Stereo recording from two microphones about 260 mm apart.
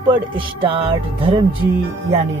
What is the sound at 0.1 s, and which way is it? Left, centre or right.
Speech, centre.